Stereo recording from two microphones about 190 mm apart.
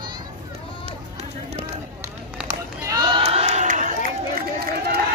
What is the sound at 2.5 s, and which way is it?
Run, 20° right (ahead or behind).